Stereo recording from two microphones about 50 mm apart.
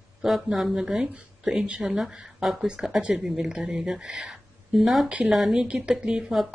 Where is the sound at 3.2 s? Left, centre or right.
Centre.